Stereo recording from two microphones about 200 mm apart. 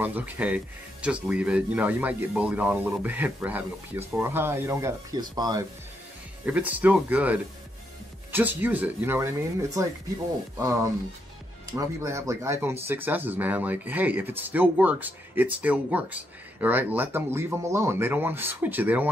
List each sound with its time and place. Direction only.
0.0 s speech: 10° right (ahead or behind)